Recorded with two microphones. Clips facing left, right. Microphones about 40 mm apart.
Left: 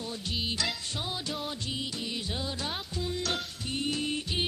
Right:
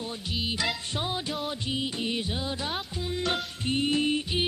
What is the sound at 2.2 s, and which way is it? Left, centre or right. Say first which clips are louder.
Music: right 3 dB; centre.